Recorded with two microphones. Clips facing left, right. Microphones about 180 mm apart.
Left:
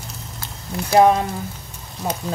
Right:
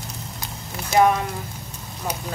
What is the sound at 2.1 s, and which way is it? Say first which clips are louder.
Speech: left 4 dB; 20° left (ahead or behind).